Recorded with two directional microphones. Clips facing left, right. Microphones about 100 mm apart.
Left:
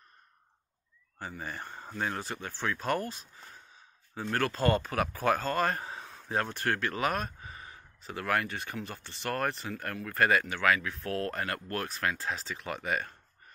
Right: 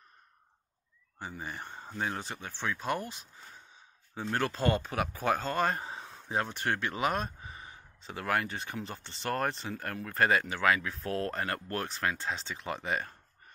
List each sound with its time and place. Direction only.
1.2 s speech: 15° right (ahead or behind)